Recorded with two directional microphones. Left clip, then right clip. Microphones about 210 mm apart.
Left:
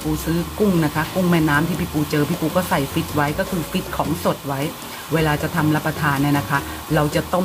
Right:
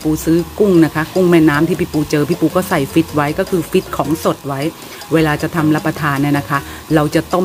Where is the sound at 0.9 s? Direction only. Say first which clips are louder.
Right 8 dB; 45° right (ahead or behind).